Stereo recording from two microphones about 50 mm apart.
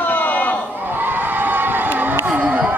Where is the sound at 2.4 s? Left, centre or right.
Right.